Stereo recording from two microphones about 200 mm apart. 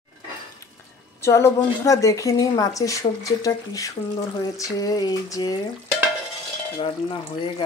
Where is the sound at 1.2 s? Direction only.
15° left (ahead or behind).